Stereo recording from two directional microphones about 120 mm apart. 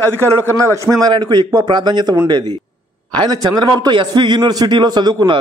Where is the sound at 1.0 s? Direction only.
35° right (ahead or behind).